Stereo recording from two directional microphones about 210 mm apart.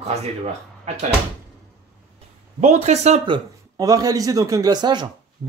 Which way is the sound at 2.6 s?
35° right (ahead or behind).